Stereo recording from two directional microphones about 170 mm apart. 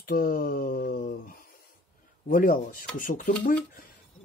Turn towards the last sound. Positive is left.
turn(degrees=50)  # may be behind; listen again after turning